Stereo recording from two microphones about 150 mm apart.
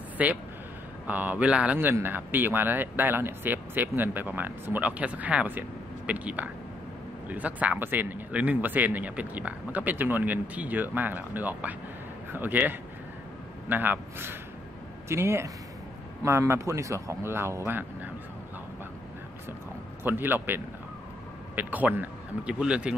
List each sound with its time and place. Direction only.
0.2 s speech: 10° right (ahead or behind)
20.0 s speech: 15° right (ahead or behind)